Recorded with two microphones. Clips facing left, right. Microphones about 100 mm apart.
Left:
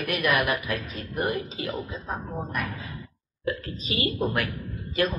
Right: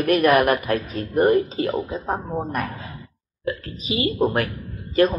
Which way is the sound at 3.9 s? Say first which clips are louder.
Right 6 dB; 30° right (ahead or behind).